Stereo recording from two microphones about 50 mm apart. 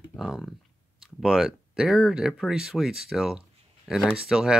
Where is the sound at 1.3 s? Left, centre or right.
Centre.